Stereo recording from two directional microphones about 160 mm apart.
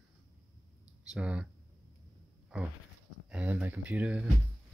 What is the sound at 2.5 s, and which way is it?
Speech, 5° right (ahead or behind).